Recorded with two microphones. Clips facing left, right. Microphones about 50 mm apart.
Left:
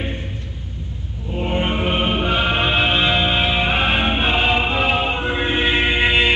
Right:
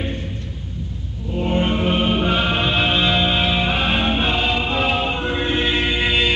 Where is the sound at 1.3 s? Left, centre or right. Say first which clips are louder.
Right 1 dB; left.